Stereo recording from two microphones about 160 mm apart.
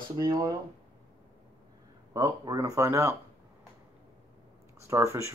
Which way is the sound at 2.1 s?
20° right (ahead or behind).